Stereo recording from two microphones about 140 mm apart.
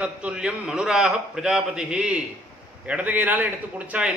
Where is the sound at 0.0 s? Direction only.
5° right (ahead or behind).